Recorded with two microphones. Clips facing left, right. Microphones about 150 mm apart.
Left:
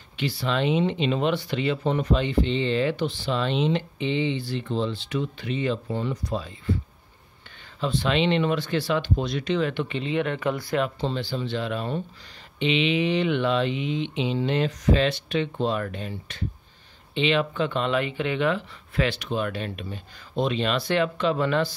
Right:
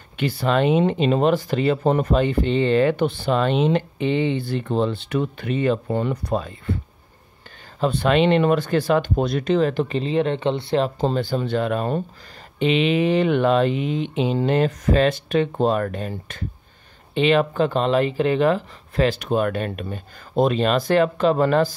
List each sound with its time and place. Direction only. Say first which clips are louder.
0.2 s speech: right 6 dB; 50° right (ahead or behind)
7.8 s speech: right 6 dB; 50° right (ahead or behind); by 10.9 s 30° right (ahead or behind)
11.0 s speech: right 6 dB; 45° right (ahead or behind)